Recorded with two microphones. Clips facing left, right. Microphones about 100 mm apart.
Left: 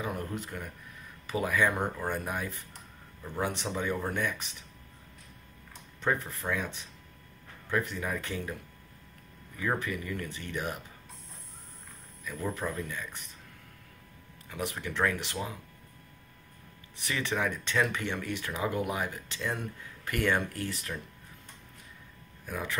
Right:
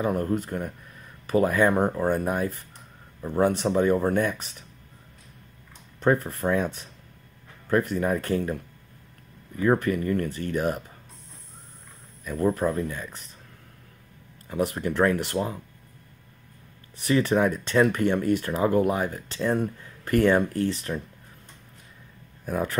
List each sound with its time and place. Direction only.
0.0 s speech: 45° right (ahead or behind)
5.9 s speech: 45° right (ahead or behind)
9.8 s speech: 50° right (ahead or behind)
12.3 s speech: 45° right (ahead or behind)
14.5 s speech: 40° right (ahead or behind)
17.0 s speech: 40° right (ahead or behind)
22.5 s speech: 40° right (ahead or behind)